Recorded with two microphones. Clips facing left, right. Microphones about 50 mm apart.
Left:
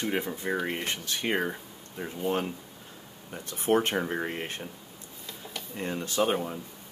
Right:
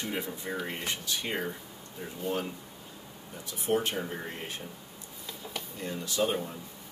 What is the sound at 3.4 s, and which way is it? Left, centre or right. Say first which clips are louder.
Speech: left 4 dB; left.